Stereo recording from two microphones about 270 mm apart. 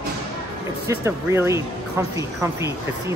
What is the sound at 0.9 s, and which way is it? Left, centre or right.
Speech, centre.